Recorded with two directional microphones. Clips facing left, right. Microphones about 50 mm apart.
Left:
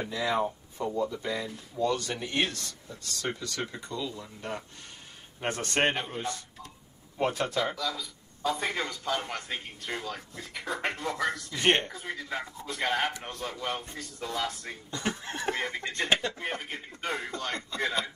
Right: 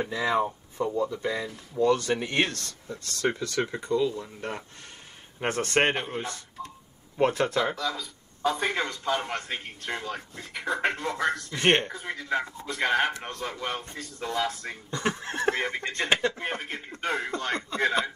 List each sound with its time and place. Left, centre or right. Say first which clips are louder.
0.0 s speech: right 3 dB; right
0.8 s speech: right 2 dB; centre
2.0 s speech: right 4 dB; right
7.2 s speech: right 3 dB; right
8.5 s speech: right 4 dB; right
9.8 s speech: right 3 dB; right
11.2 s speech: right 3 dB; right
16.9 s speech: right 5 dB; right